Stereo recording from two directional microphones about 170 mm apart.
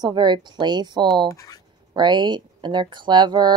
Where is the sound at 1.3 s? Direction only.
20° left (ahead or behind).